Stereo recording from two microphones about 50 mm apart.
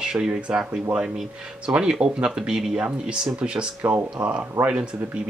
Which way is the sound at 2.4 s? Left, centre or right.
Centre.